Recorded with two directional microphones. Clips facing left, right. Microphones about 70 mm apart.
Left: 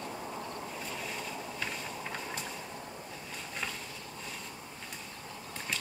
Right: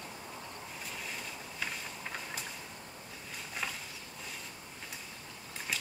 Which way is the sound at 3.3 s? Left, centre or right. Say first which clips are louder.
Even; centre.